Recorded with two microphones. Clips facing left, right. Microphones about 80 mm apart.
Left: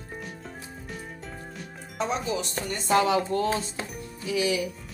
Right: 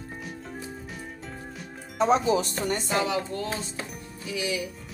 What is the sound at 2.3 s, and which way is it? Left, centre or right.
Speech, right.